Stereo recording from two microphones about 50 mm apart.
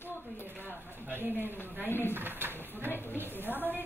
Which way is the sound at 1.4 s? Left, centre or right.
Left.